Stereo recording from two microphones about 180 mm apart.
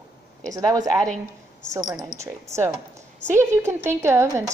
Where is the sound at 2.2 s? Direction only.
15° right (ahead or behind).